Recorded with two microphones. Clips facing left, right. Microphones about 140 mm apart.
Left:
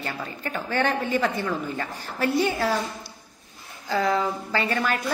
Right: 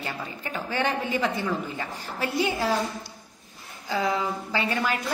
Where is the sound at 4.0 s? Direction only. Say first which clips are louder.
Left 3 dB; centre (ahead or behind).